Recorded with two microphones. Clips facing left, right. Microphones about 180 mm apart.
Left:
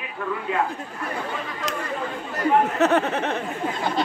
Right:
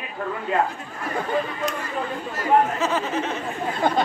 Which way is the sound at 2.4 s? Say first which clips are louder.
Left 1 dB; 65° left (ahead or behind).